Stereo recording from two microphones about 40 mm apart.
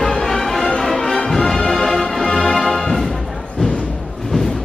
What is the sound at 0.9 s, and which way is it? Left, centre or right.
Music, centre.